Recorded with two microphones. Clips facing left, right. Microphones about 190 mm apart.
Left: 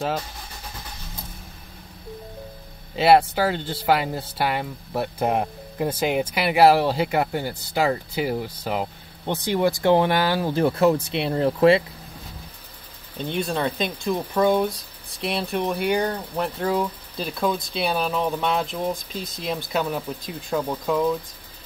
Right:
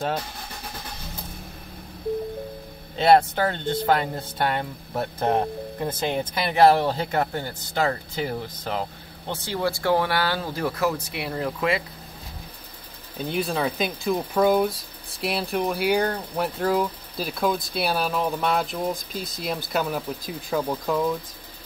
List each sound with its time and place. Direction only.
3.0 s speech: 5° left (ahead or behind); by 11.8 s 30° left (ahead or behind)
13.2 s speech: 5° right (ahead or behind)